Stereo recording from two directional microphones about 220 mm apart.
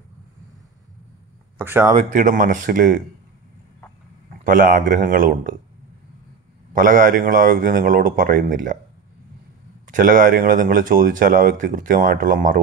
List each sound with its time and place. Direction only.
1.6 s speech: 10° right (ahead or behind)
2.0 s speech: 35° right (ahead or behind)
4.5 s speech: 35° right (ahead or behind)
6.7 s speech: 35° right (ahead or behind)
9.8 s speech: 35° right (ahead or behind)